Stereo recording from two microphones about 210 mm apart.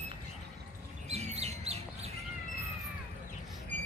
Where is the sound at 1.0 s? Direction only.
30° right (ahead or behind).